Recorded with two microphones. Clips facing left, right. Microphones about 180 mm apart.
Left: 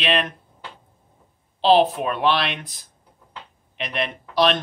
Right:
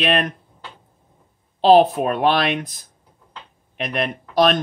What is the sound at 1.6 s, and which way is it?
Speech, 45° right (ahead or behind).